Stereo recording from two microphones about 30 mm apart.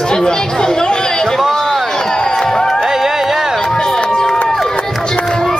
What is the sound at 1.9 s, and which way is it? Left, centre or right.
Music, left.